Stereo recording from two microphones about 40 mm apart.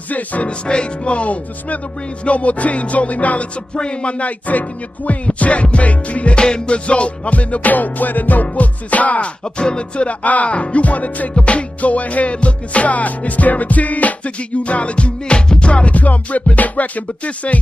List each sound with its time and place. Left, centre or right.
0.1 s music: left
0.5 s music: left
3.7 s music: left
6.3 s music: left
9.4 s music: left
15.7 s music: left